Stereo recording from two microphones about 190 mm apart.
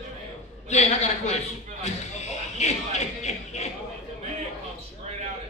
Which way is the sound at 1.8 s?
35° left (ahead or behind).